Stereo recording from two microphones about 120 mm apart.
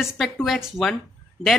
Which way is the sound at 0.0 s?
Centre (ahead or behind).